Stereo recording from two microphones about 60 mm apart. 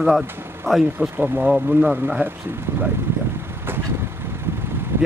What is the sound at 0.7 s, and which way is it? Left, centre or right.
Speech, right.